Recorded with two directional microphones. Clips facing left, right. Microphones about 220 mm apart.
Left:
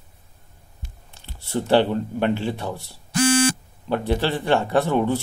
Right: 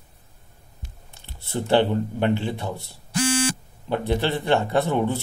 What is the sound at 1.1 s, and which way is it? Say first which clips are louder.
Computer keyboard: left 3 dB; 20° right (ahead or behind).